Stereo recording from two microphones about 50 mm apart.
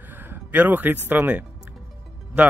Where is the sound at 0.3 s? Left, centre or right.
Right.